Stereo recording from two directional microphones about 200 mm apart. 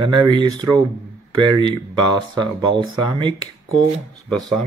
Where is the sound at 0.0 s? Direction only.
20° right (ahead or behind).